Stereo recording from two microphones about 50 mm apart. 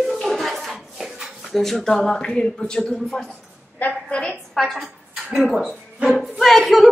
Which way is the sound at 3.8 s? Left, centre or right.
Left.